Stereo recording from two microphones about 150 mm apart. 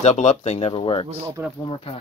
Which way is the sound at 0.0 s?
50° left (ahead or behind).